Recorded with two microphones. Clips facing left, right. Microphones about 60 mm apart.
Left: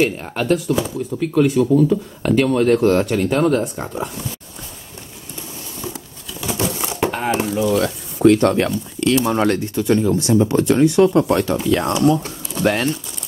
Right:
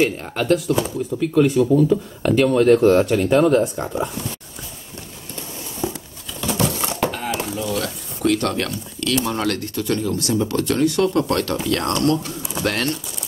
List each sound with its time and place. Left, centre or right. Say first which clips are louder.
0.0 s speech: left 1 dB; centre
6.4 s crushing: right 1 dB; centre
7.1 s a sound: left 5 dB; left
7.7 s speech: left 6 dB; left; by 13.0 s centre